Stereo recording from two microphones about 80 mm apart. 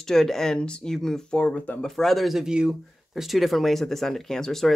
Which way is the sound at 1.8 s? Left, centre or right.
Centre.